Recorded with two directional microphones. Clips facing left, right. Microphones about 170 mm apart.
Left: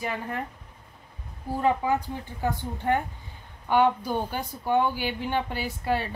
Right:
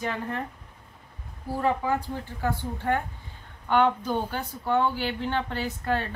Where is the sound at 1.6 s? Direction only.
15° left (ahead or behind).